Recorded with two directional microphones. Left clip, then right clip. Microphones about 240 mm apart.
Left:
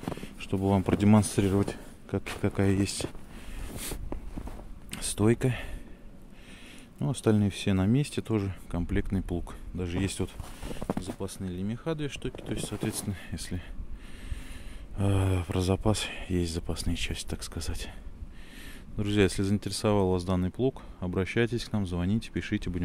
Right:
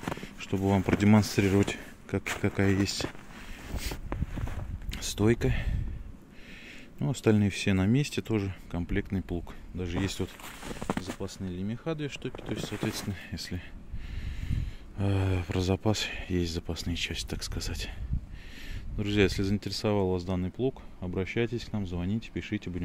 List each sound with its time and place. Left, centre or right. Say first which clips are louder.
0.1 s speech: even; centre
1.5 s speech: right 2 dB; centre
2.4 s speech: left 1 dB; centre
3.6 s a sound: right 1 dB; centre
4.9 s speech: even; centre
7.0 s speech: right 1 dB; centre
18.9 s speech: even; centre